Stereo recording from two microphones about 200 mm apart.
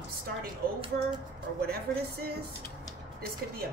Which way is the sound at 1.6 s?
50° right (ahead or behind).